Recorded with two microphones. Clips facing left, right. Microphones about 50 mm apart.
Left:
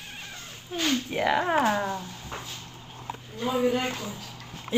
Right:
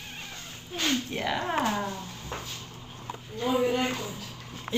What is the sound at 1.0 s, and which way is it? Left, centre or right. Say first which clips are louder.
Speech: left 5 dB; centre.